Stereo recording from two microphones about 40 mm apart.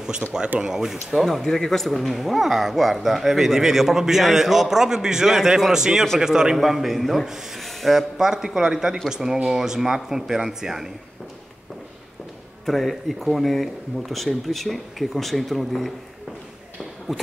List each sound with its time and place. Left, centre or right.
0.2 s speech: left
0.6 s speech: centre
1.2 s speech: centre
6.5 s speech: centre
7.5 s music: centre
8.2 s speech: centre
12.6 s speech: centre
17.1 s speech: centre